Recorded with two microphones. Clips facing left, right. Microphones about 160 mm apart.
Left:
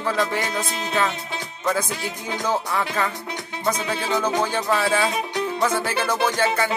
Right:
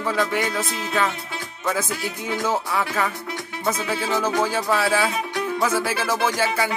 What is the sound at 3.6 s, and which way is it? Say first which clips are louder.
Music: even; 5° right (ahead or behind).